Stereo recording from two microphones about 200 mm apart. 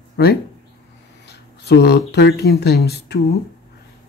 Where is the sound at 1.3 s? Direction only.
55° left (ahead or behind).